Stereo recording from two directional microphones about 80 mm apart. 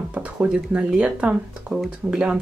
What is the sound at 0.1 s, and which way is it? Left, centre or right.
Speech, centre.